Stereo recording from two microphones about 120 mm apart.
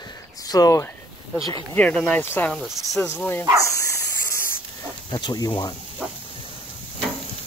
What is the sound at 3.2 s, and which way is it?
Speech, 15° left (ahead or behind).